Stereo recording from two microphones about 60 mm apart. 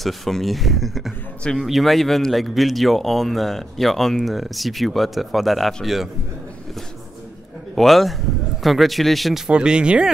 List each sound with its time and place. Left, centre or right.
0.0 s speech: centre
7.7 s speech: centre
9.5 s speech: centre